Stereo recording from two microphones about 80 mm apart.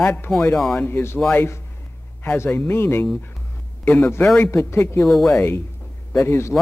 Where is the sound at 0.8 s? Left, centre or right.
Left.